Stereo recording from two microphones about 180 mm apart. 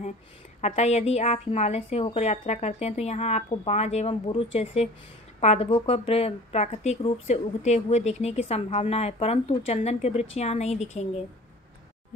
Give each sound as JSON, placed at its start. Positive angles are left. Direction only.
{"t": 0.6, "sound": "a woman's voice", "side_deg": 40}